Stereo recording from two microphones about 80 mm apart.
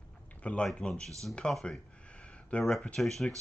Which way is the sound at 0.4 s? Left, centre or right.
Centre.